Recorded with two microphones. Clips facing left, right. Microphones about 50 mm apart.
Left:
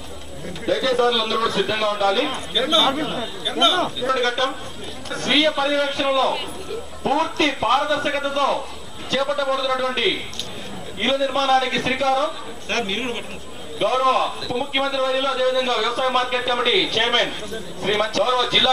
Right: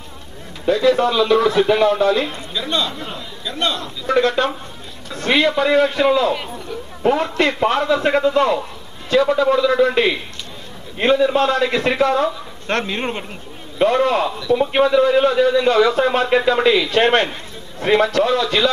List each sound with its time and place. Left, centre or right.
0.7 s a man's voice: right
3.4 s a man's voice: centre
3.7 s a man's voice: left
4.1 s a man's voice: right
13.7 s a man's voice: right